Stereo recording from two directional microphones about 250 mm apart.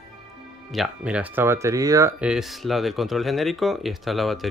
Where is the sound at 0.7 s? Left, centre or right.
Centre.